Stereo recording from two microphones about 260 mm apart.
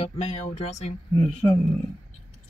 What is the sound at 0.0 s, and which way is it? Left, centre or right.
Speech, left.